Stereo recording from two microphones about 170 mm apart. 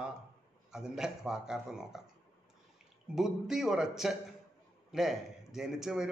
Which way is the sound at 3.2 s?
5° right (ahead or behind).